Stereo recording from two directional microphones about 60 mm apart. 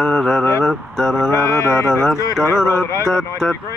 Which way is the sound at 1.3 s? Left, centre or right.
Left.